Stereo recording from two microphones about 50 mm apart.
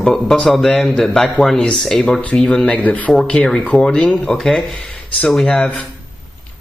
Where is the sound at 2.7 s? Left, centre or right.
Left.